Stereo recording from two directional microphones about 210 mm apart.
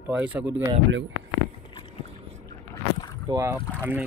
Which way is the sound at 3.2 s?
15° right (ahead or behind).